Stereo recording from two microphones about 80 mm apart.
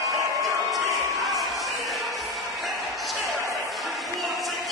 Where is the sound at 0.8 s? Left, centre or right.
Right.